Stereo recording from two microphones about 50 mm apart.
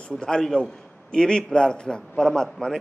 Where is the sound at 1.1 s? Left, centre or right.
Centre.